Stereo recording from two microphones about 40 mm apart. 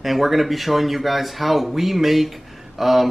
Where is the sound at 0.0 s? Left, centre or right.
Centre.